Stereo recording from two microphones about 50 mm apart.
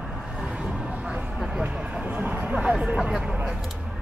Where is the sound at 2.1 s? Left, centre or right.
Right.